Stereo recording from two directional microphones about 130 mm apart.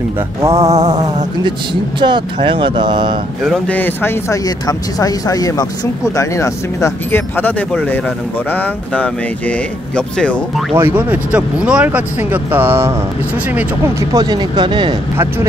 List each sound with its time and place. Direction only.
0.5 s mantra: 55° right (ahead or behind)
0.8 s speech: 30° right (ahead or behind)
3.4 s speech: 5° left (ahead or behind)
4.6 s speech: 30° left (ahead or behind); by 10.3 s 10° left (ahead or behind)
10.8 s speech: 15° right (ahead or behind)
14.1 s speech: 30° right (ahead or behind)